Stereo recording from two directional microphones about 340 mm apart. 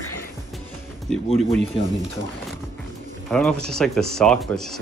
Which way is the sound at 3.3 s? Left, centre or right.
Centre.